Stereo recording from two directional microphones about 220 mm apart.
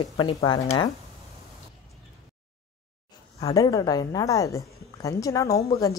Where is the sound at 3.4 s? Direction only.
15° left (ahead or behind).